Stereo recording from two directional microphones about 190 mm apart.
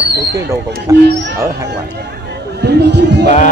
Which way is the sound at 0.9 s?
15° right (ahead or behind).